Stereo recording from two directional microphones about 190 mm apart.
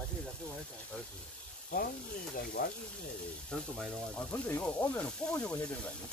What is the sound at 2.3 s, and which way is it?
Speech, 55° left (ahead or behind).